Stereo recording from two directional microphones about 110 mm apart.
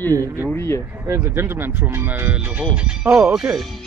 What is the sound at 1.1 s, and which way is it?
Speech, 25° right (ahead or behind).